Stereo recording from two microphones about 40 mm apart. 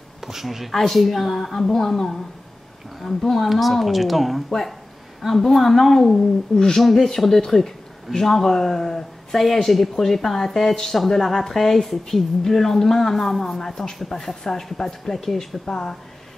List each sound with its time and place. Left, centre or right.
0.2 s speech: centre
6.5 s speech: centre
6.8 s speech: centre